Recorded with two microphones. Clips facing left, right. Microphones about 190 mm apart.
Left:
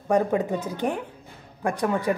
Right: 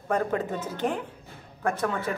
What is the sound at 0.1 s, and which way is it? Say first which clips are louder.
A woman's voice: left 5 dB; 15° left (ahead or behind).